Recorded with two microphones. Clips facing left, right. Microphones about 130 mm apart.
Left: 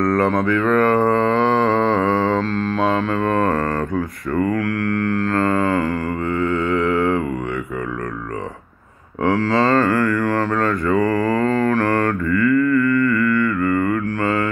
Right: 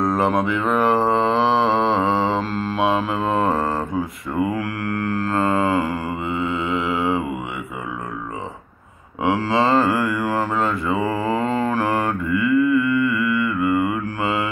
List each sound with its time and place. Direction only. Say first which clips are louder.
0.0 s mantra: left 2 dB; 15° right (ahead or behind)
9.2 s mantra: left 2 dB; 10° right (ahead or behind)